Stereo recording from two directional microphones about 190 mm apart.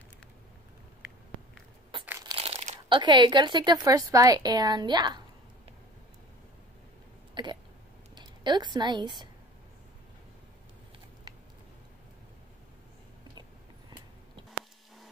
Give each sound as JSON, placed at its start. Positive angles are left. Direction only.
{"t": 2.0, "sound": "crushing", "side_deg": -15}
{"t": 2.3, "sound": "crumpling", "side_deg": -35}
{"t": 2.9, "sound": "a woman's voice", "side_deg": -25}
{"t": 7.4, "sound": "hiccup", "side_deg": -25}
{"t": 8.1, "sound": "speech", "side_deg": -20}